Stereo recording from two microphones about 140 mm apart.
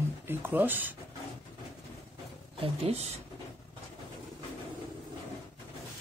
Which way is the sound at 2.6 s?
45° right (ahead or behind).